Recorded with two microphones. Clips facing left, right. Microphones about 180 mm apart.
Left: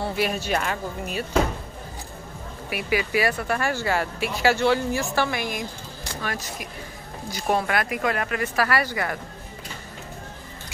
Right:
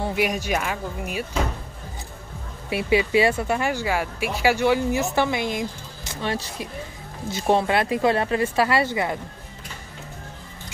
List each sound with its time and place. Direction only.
0.0 s speech: 15° right (ahead or behind)
2.7 s speech: 25° right (ahead or behind)